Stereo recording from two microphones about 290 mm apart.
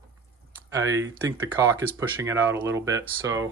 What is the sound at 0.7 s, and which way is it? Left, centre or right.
Speech, centre.